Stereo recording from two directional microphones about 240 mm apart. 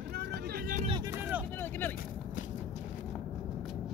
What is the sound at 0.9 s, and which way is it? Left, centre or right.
Vehicle, centre.